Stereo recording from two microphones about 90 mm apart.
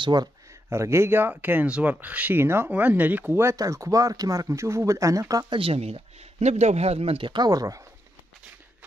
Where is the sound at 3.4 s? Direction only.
35° right (ahead or behind).